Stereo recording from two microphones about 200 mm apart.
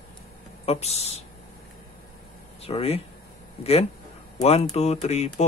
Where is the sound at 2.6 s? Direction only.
30° left (ahead or behind).